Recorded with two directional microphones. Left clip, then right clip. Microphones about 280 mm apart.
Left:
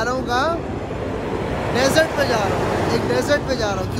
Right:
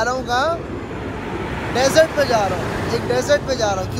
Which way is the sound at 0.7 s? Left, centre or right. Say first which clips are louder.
Left 2 dB; left.